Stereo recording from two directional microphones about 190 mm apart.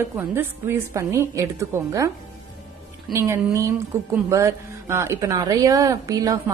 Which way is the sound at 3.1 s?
15° right (ahead or behind).